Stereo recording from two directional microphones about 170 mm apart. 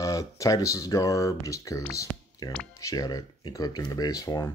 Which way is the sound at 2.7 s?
20° left (ahead or behind).